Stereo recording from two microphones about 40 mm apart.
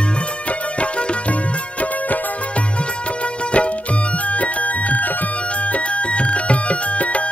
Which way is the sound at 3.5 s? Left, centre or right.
Left.